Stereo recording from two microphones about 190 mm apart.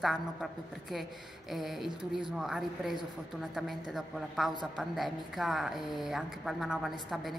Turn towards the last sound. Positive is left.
turn(degrees=0)  # may be behind; listen again after turning